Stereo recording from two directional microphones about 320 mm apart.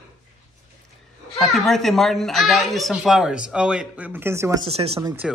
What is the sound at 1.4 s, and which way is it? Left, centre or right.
Speech, centre.